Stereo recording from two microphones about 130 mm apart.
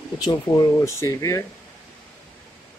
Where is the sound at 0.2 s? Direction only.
30° left (ahead or behind).